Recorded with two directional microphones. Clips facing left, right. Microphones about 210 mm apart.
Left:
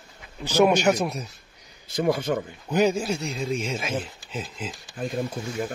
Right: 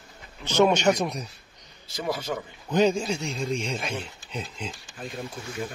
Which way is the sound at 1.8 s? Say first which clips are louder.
Left 6 dB; 55° left (ahead or behind).